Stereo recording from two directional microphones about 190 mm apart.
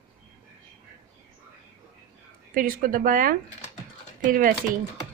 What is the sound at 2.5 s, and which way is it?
A woman's voice, 45° right (ahead or behind).